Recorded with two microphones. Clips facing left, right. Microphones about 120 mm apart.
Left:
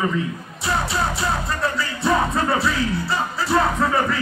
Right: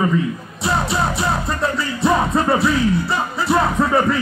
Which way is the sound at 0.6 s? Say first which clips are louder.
Right 3 dB; 20° right (ahead or behind).